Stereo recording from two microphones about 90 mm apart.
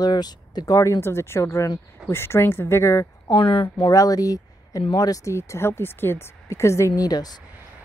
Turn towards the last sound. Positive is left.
turn(degrees=45)  # may be behind; listen again after turning